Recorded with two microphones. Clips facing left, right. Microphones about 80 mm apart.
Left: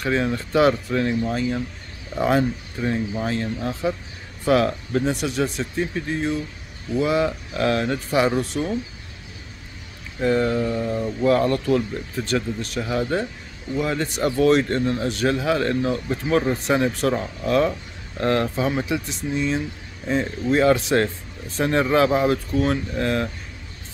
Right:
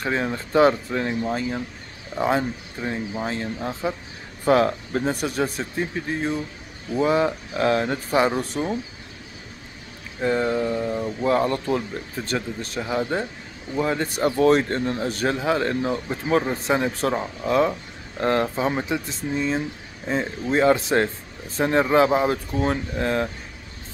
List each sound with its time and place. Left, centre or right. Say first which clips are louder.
0.0 s speech: left 2 dB; centre
3.8 s speech: left 2 dB; right
5.8 s speech: left 1 dB; centre
6.9 s speech: even; right
10.2 s speech: left 2 dB; centre
11.2 s speech: left 2 dB; right
12.8 s speech: left 1 dB; centre